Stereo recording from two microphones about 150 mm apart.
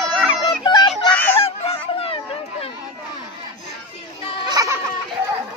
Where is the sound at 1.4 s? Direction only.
40° left (ahead or behind).